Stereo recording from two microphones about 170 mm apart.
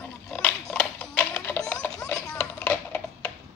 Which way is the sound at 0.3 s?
5° left (ahead or behind).